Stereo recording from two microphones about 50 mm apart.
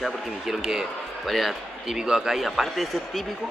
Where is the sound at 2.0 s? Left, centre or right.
Centre.